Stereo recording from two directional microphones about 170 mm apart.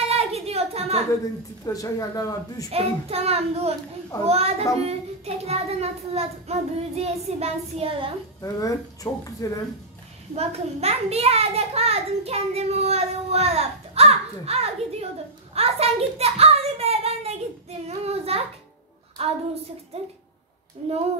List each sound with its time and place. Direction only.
0.0 s a sound: 35° right (ahead or behind)
1.7 s speech: 20° left (ahead or behind)
2.7 s a child's voice: 35° right (ahead or behind)
8.4 s speech: 20° left (ahead or behind)
10.3 s a child's voice: 40° right (ahead or behind)
15.5 s a sound: 35° right (ahead or behind)
19.2 s a child's voice: 35° right (ahead or behind)